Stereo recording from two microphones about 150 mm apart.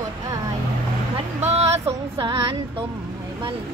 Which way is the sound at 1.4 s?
45° right (ahead or behind).